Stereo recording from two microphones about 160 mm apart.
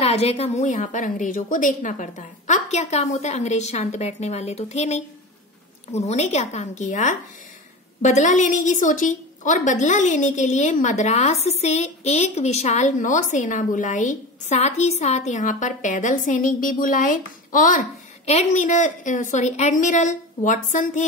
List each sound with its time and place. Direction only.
0.0 s a woman's voice: 40° left (ahead or behind)